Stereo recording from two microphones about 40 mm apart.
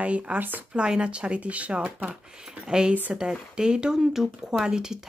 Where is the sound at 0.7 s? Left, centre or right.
Right.